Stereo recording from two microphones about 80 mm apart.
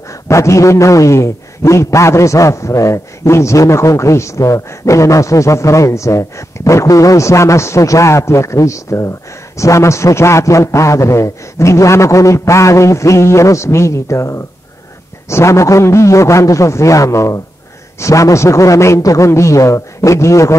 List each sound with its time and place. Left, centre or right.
0.3 s a man's voice: left